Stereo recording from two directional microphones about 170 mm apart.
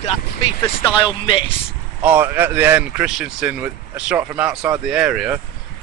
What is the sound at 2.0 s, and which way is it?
Speech, 10° right (ahead or behind).